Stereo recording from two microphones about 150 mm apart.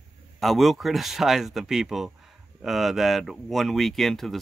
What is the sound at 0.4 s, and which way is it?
Speech, centre (ahead or behind).